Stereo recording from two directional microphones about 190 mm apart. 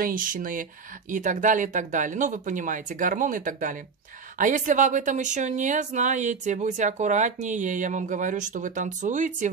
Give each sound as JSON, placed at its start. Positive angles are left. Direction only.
{"t": 0.0, "sound": "a woman's voice", "side_deg": -45}